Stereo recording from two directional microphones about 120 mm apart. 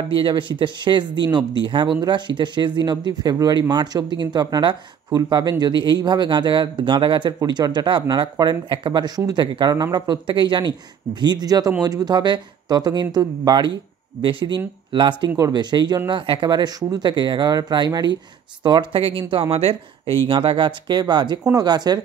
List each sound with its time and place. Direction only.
0.1 s speech: 45° right (ahead or behind)
20.2 s speech: 40° right (ahead or behind)